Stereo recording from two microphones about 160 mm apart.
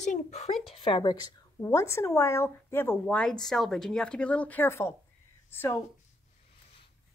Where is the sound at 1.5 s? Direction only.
15° left (ahead or behind).